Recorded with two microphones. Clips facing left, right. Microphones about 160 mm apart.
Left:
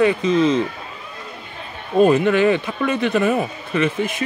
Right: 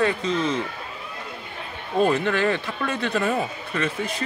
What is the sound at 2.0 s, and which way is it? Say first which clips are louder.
Speech: left 7 dB; 15° left (ahead or behind).